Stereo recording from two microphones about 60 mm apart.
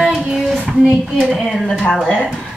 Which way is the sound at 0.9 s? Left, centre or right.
Centre.